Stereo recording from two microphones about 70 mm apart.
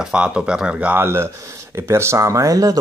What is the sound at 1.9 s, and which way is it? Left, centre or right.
Speech, right.